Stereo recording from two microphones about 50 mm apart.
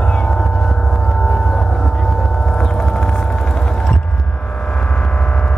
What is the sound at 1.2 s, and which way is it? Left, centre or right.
Vehicle, centre.